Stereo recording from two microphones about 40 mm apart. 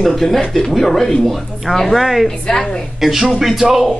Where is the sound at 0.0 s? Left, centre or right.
Centre.